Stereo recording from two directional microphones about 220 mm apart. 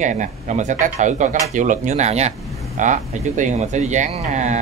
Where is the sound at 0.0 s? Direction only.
35° right (ahead or behind).